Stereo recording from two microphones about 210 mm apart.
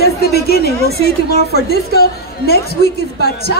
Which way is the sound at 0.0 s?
50° left (ahead or behind).